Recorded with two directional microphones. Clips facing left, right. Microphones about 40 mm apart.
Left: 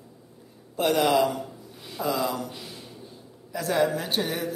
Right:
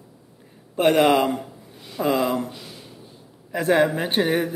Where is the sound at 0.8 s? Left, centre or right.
Right.